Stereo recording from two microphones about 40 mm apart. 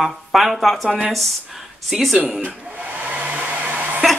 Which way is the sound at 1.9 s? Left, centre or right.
Centre.